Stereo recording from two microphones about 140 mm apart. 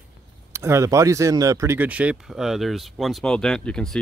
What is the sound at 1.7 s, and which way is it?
Speech, 10° right (ahead or behind).